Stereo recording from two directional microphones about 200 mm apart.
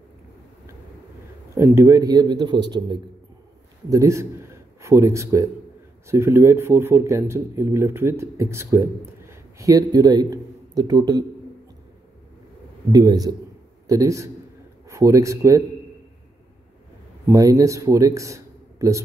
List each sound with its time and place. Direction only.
1.5 s a man's voice: 15° right (ahead or behind)
12.9 s a man's voice: 20° right (ahead or behind)
17.3 s a man's voice: 15° right (ahead or behind)